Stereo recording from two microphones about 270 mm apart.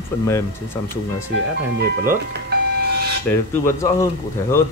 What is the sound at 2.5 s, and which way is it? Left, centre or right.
Vehicle, right.